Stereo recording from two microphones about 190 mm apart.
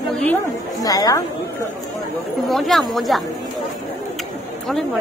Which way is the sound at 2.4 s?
Centre (ahead or behind).